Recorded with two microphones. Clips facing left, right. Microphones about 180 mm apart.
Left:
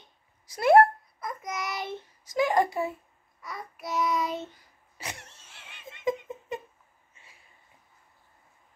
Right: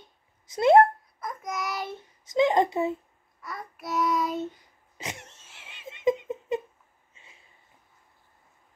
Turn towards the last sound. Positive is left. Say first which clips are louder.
# right 1 dB
turn(degrees=-20)  # may be behind; listen again after turning